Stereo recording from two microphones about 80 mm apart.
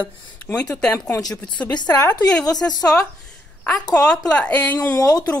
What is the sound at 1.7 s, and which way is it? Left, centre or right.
Speech, left.